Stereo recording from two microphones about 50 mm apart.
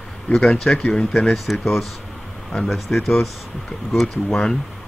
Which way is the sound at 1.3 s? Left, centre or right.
Centre.